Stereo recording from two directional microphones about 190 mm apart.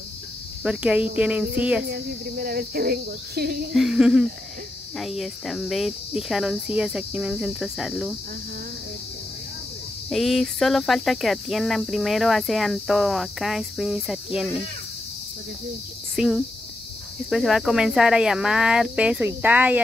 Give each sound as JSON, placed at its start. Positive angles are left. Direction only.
{"t": 0.7, "sound": "cricket", "side_deg": -5}
{"t": 1.9, "sound": "cricket", "side_deg": -55}
{"t": 3.7, "sound": "cricket", "side_deg": 0}
{"t": 10.0, "sound": "cricket", "side_deg": 0}
{"t": 16.2, "sound": "cricket", "side_deg": 0}